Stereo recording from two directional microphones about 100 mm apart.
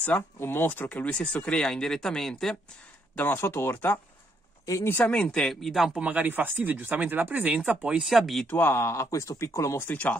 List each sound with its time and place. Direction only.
0.0 s speech: 25° left (ahead or behind); by 2.5 s 5° left (ahead or behind)
3.2 s speech: 20° left (ahead or behind); by 5.9 s centre (ahead or behind)
5.9 s speech: 15° right (ahead or behind)
7.8 s speech: 5° right (ahead or behind)
8.5 s speech: 20° left (ahead or behind)
9.8 s speech: 15° left (ahead or behind)